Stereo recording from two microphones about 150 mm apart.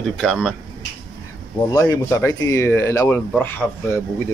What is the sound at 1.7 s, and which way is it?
Speech, 25° left (ahead or behind).